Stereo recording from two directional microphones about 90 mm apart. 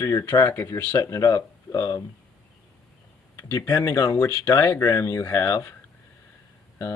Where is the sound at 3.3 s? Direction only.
35° left (ahead or behind).